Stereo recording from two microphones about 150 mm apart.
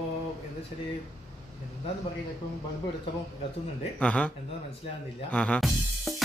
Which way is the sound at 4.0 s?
10° left (ahead or behind).